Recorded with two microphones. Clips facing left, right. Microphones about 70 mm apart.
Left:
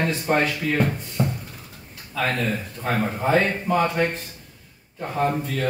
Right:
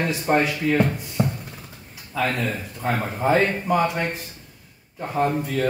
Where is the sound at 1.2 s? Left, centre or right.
Right.